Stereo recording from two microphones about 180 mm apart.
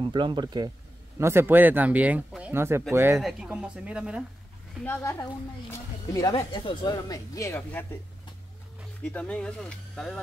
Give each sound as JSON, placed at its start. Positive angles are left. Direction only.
{"t": 0.0, "sound": "speech", "side_deg": -25}
{"t": 1.2, "sound": "speech", "side_deg": -15}
{"t": 4.8, "sound": "speech", "side_deg": 10}
{"t": 6.3, "sound": "speech", "side_deg": 30}
{"t": 9.0, "sound": "speech", "side_deg": 5}